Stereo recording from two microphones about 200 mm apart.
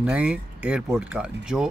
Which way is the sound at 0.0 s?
5° right (ahead or behind).